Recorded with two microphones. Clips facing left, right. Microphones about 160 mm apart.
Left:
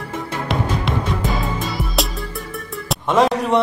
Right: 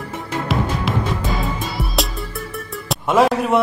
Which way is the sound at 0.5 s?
Centre (ahead or behind).